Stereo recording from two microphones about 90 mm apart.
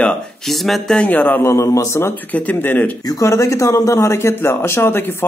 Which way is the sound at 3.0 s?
45° left (ahead or behind).